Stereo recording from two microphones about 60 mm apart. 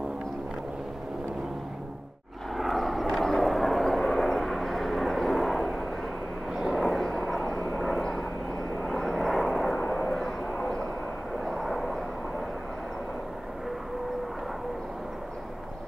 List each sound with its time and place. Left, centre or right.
2.5 s vehicle: centre
9.8 s vehicle: left
11.4 s vehicle: centre